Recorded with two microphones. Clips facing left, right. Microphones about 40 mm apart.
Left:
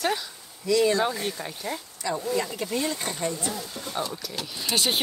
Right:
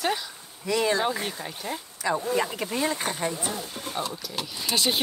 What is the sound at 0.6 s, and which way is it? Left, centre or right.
Speech, right.